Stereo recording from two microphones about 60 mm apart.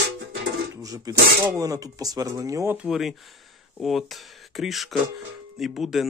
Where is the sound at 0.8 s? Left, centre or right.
Right.